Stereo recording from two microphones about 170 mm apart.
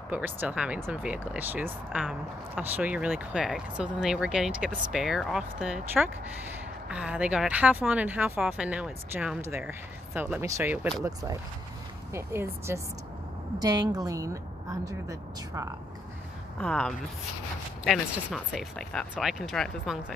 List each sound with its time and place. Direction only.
0.1 s speech: 10° right (ahead or behind)
12.1 s a woman's voice: 15° right (ahead or behind)
16.5 s speech: 5° left (ahead or behind)